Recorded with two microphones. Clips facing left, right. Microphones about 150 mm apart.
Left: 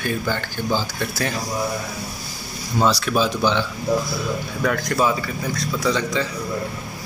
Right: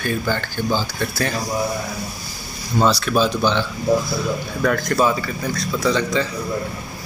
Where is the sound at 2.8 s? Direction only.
10° left (ahead or behind).